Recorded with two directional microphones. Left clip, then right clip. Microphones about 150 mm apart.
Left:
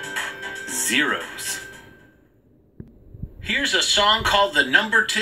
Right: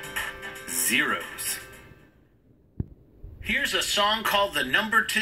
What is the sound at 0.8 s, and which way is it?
Speech, 35° left (ahead or behind).